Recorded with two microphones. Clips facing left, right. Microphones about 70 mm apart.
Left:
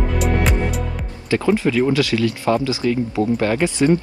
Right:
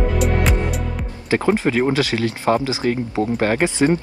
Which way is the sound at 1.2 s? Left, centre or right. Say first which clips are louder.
Even; right.